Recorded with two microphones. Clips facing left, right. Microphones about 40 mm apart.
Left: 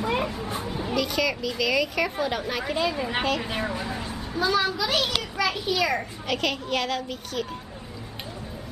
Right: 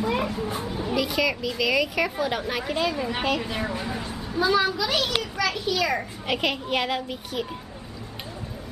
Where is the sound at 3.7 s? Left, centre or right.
Centre.